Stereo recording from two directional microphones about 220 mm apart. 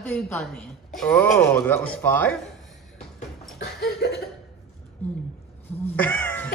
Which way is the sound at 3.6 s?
45° left (ahead or behind).